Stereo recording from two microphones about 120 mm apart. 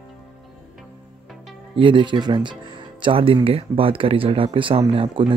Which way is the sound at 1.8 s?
45° right (ahead or behind).